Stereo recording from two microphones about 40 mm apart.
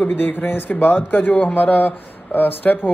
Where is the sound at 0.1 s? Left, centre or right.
Left.